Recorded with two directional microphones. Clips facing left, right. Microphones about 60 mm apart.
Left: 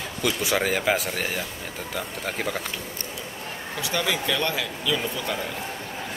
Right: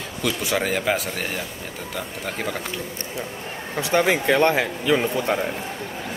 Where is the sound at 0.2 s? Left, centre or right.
Centre.